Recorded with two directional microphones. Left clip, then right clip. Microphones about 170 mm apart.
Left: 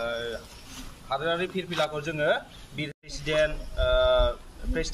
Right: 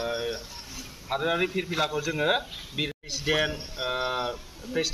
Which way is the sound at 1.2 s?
15° left (ahead or behind).